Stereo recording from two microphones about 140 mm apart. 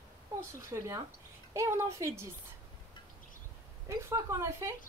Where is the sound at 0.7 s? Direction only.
25° right (ahead or behind).